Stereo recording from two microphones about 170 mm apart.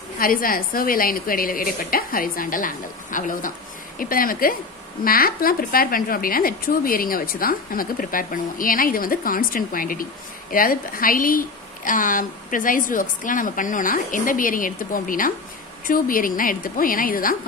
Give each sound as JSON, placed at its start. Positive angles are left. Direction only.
{"t": 0.2, "sound": "a woman's voice", "side_deg": 55}